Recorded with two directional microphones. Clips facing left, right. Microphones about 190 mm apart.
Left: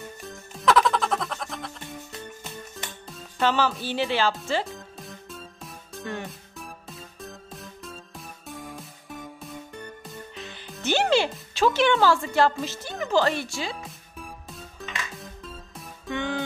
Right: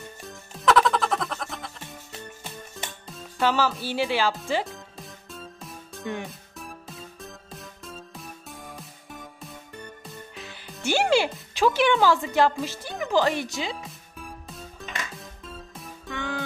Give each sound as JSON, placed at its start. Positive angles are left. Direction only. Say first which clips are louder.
{"t": 0.6, "sound": "music", "louder": "even", "side_deg": 0}
{"t": 3.1, "sound": "speech", "louder": "even", "side_deg": -5}
{"t": 4.9, "sound": "music", "louder": "left 1 dB", "side_deg": 0}
{"t": 10.0, "sound": "music", "louder": "left 2 dB", "side_deg": -5}
{"t": 11.5, "sound": "speech", "louder": "even", "side_deg": -10}
{"t": 14.5, "sound": "music", "louder": "even", "side_deg": 0}
{"t": 16.1, "sound": "music", "louder": "left 3 dB", "side_deg": 20}